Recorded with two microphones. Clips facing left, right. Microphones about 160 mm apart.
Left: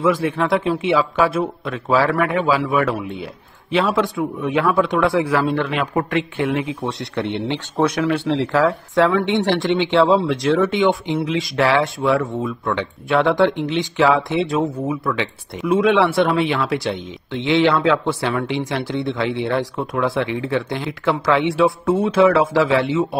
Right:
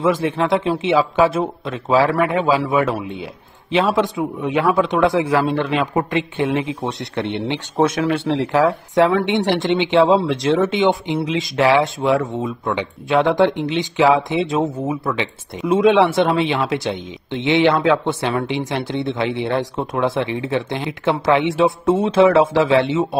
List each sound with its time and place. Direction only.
0.0 s speech: 25° right (ahead or behind)